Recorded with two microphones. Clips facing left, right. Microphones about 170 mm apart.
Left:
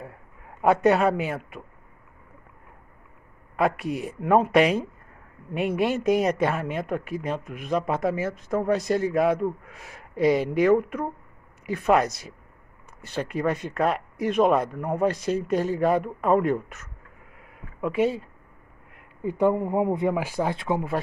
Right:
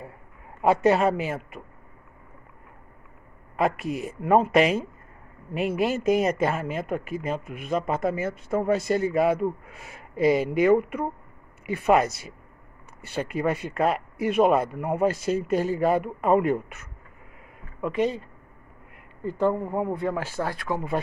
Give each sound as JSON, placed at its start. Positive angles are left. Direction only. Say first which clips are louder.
{"t": 0.6, "sound": "speech", "louder": "left 1 dB", "side_deg": 0}
{"t": 3.5, "sound": "speech", "louder": "left 1 dB", "side_deg": 0}